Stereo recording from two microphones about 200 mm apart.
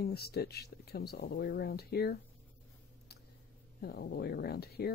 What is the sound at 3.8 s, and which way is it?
Speech, 55° left (ahead or behind).